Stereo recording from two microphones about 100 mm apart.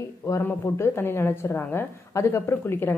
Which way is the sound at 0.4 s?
25° left (ahead or behind).